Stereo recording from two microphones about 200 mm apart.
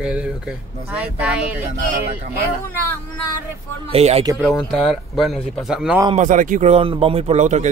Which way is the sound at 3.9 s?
30° right (ahead or behind).